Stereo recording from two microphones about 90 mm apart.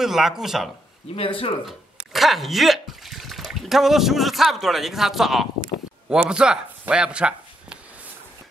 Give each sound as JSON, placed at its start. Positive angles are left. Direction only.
{"t": 0.0, "sound": "speech", "side_deg": -5}
{"t": 1.1, "sound": "speech", "side_deg": 90}
{"t": 1.7, "sound": "speech", "side_deg": 0}